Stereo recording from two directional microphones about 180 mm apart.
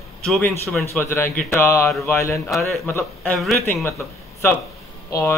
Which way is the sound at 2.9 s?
10° left (ahead or behind).